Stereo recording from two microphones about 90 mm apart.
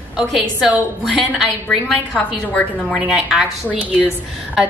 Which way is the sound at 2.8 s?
5° right (ahead or behind).